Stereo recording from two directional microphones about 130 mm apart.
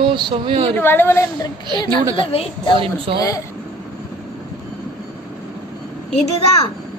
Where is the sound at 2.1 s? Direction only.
45° left (ahead or behind).